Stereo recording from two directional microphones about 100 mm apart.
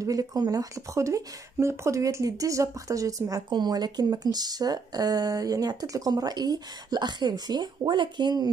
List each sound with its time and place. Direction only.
0.0 s speech: 35° right (ahead or behind)